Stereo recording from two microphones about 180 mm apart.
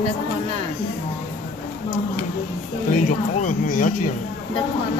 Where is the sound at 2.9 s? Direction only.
45° left (ahead or behind).